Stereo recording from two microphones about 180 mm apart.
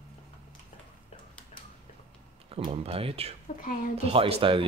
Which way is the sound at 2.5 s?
35° right (ahead or behind).